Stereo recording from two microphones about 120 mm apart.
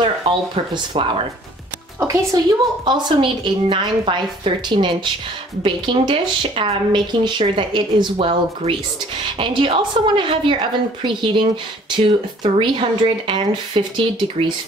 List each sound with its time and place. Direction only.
0.0 s a woman's voice: 45° right (ahead or behind)
2.0 s a woman's voice: 25° right (ahead or behind)
2.8 s a woman's voice: 35° right (ahead or behind)
12.4 s a woman's voice: 45° right (ahead or behind)